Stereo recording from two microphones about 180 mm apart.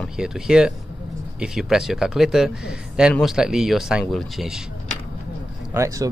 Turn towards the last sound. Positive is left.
turn(degrees=-20)  # may be behind; listen again after turning